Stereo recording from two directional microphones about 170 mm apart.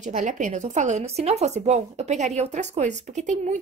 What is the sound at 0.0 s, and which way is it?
Speech, 50° right (ahead or behind).